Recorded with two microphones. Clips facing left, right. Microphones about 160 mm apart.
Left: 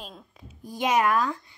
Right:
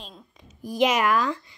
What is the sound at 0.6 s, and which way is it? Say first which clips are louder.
Speech: right 2 dB; 90° right.